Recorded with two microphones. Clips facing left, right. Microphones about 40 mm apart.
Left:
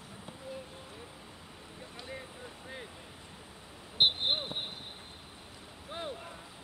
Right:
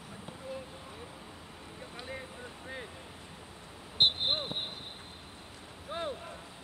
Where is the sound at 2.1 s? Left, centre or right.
Centre.